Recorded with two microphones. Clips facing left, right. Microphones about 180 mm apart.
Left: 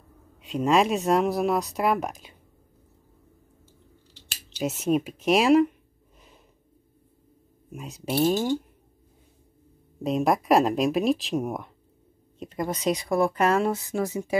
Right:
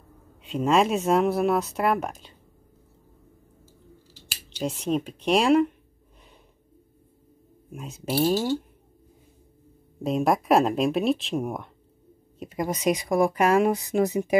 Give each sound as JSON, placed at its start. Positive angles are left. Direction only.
{"t": 0.4, "sound": "speech", "side_deg": 0}
{"t": 4.8, "sound": "speech", "side_deg": 5}
{"t": 7.7, "sound": "speech", "side_deg": 0}
{"t": 10.0, "sound": "speech", "side_deg": 0}
{"t": 12.7, "sound": "speech", "side_deg": -15}